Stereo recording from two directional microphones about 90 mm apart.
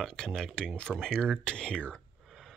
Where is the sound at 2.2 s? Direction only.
Centre (ahead or behind).